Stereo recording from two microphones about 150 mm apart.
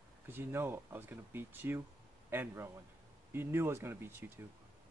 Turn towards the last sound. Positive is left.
turn(degrees=-15)  # may be behind; listen again after turning